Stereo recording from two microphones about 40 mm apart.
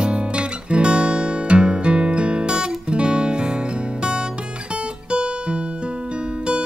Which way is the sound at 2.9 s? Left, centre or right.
Right.